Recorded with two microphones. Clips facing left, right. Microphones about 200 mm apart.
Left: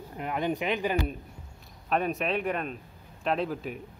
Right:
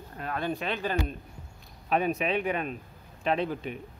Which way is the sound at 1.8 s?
Centre (ahead or behind).